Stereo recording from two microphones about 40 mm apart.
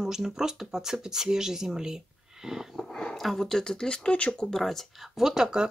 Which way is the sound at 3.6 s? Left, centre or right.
Centre.